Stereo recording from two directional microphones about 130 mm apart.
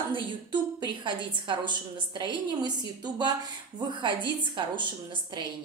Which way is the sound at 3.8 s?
35° right (ahead or behind).